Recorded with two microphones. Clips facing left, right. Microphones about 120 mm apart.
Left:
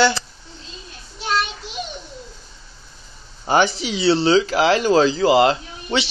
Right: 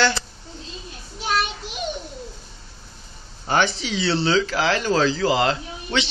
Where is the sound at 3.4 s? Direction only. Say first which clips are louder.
Left 4 dB; 15° left (ahead or behind).